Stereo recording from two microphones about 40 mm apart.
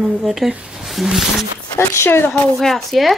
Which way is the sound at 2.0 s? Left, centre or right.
Left.